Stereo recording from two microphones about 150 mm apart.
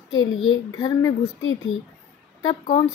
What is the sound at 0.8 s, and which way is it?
Speech, 25° left (ahead or behind).